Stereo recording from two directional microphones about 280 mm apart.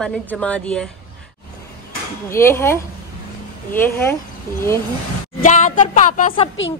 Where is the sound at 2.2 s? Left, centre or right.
Centre.